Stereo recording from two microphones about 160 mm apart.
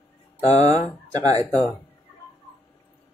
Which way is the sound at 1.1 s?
20° right (ahead or behind).